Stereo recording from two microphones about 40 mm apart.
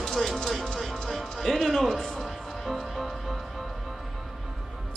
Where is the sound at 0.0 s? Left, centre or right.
Centre.